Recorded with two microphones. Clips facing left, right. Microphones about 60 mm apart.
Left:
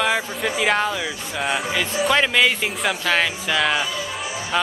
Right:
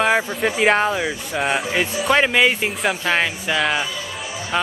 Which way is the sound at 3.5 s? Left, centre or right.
Centre.